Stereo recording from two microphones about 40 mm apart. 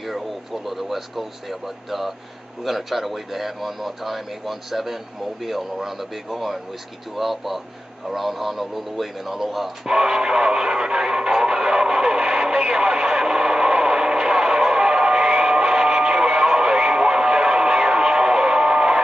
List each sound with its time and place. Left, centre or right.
0.7 s speech: centre
9.8 s music: centre